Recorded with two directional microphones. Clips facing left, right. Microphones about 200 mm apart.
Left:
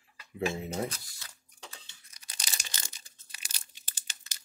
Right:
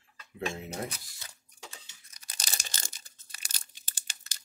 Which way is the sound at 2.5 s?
40° right (ahead or behind).